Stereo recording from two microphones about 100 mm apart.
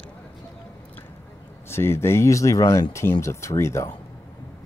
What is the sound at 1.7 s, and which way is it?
Speech, 25° left (ahead or behind).